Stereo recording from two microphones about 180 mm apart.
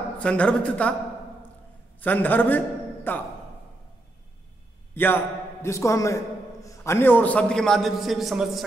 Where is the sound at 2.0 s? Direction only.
10° left (ahead or behind).